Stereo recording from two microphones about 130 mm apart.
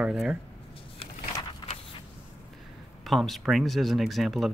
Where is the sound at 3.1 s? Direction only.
Centre (ahead or behind).